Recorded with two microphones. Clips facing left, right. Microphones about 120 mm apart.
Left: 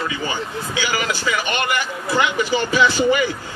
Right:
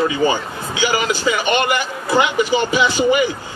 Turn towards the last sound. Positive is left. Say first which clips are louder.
# right 1 dB
turn(degrees=-15)  # may be behind; listen again after turning